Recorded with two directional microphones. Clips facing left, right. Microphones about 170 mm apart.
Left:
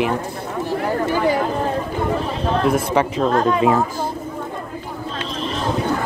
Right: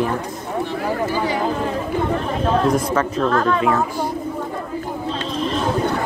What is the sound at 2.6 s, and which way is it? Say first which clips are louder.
A child's voice: left 1 dB; 10° left (ahead or behind).